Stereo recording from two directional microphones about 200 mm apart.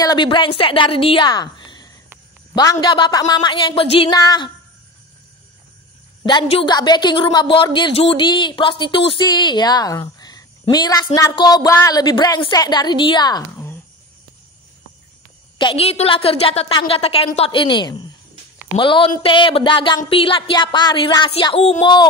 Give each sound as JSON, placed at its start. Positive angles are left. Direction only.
{"t": 0.0, "sound": "a woman's voice", "side_deg": 20}
{"t": 6.2, "sound": "a woman's voice", "side_deg": 25}
{"t": 15.5, "sound": "a woman's voice", "side_deg": 25}